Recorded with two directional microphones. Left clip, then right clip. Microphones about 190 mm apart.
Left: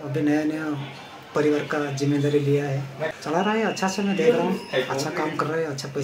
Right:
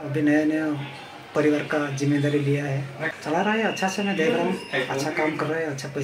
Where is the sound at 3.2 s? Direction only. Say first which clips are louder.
Even; 10° left (ahead or behind).